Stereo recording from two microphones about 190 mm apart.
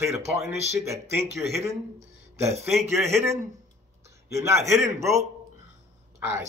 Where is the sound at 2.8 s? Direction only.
15° right (ahead or behind).